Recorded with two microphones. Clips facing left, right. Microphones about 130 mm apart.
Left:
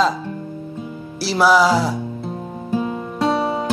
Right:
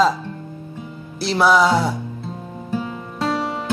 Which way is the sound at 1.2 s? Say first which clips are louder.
Left 1 dB; 5° left (ahead or behind).